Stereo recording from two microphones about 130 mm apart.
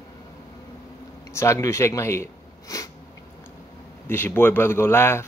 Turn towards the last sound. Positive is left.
turn(degrees=20)  # may be behind; listen again after turning